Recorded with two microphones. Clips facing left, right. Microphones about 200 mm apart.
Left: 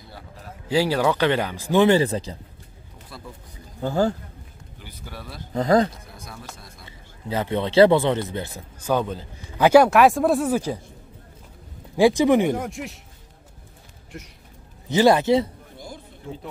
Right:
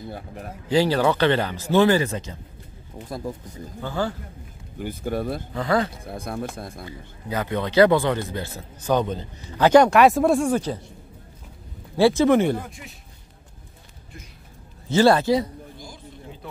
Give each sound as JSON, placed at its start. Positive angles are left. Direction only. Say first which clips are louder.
{"t": 0.7, "sound": "speech", "louder": "right 1 dB", "side_deg": 10}
{"t": 1.9, "sound": "speech", "louder": "left 2 dB", "side_deg": 30}
{"t": 3.1, "sound": "speech", "louder": "right 10 dB", "side_deg": -45}
{"t": 3.8, "sound": "speech", "louder": "left 5 dB", "side_deg": 40}
{"t": 4.7, "sound": "speech", "louder": "right 14 dB", "side_deg": -50}
{"t": 5.5, "sound": "speech", "louder": "left 5 dB", "side_deg": 40}
{"t": 6.0, "sound": "speech", "louder": "right 11 dB", "side_deg": -55}
{"t": 6.9, "sound": "speech", "louder": "left 5 dB", "side_deg": 25}
{"t": 8.9, "sound": "a man's voice", "louder": "right 1 dB", "side_deg": 5}
{"t": 12.0, "sound": "speech", "louder": "even", "side_deg": 15}
{"t": 12.5, "sound": "speech", "louder": "left 5 dB", "side_deg": 75}
{"t": 14.9, "sound": "speech", "louder": "even", "side_deg": 15}